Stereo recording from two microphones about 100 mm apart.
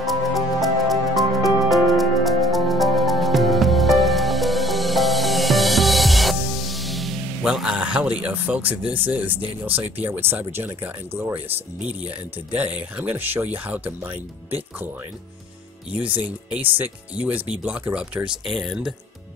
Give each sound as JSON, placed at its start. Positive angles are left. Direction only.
{"t": 0.0, "sound": "music", "side_deg": 0}
{"t": 8.2, "sound": "speech", "side_deg": -15}
{"t": 16.0, "sound": "speech", "side_deg": -10}
{"t": 18.4, "sound": "speech", "side_deg": 0}